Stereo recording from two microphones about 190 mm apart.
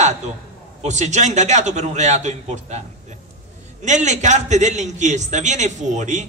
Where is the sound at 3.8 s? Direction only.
40° right (ahead or behind).